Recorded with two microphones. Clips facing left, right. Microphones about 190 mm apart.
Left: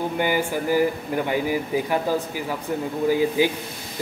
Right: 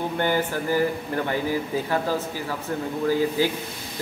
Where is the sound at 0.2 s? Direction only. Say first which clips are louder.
Even; 10° left (ahead or behind).